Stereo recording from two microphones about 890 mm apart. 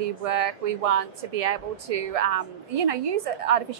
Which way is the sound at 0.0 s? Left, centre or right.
Right.